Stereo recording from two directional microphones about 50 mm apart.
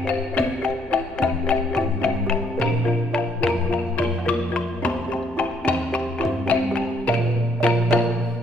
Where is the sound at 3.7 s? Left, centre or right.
Left.